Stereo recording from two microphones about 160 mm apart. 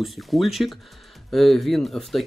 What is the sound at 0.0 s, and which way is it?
Speech, centre (ahead or behind).